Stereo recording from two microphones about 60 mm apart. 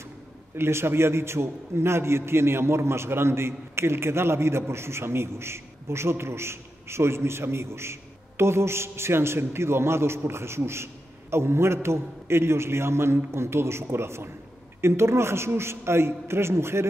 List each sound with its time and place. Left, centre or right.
0.6 s a man's voice: right